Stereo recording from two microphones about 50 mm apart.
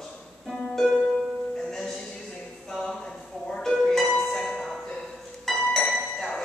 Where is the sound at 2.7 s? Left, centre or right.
Centre.